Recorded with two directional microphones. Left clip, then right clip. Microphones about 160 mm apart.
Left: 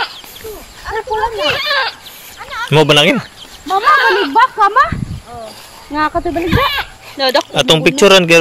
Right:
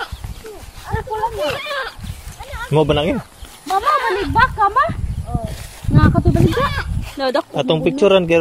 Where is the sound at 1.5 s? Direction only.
75° right (ahead or behind).